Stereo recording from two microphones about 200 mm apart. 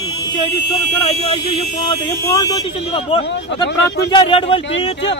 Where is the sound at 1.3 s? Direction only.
25° left (ahead or behind).